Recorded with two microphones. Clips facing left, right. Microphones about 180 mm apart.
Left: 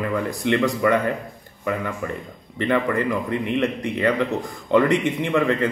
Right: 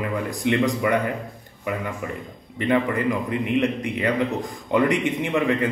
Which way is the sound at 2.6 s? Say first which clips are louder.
Even; 15° right (ahead or behind).